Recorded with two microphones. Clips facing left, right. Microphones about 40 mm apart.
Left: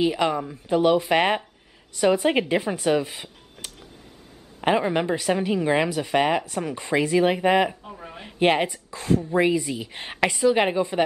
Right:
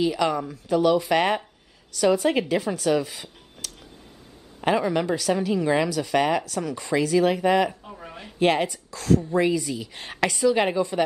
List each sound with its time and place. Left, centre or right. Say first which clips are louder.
0.0 s a woman's voice: left 1 dB; left
4.6 s a woman's voice: left 1 dB; left
7.8 s a sound: left 1 dB; centre
8.2 s a woman's voice: left 1 dB; centre